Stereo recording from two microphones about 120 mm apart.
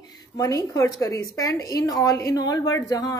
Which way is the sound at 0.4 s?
30° left (ahead or behind).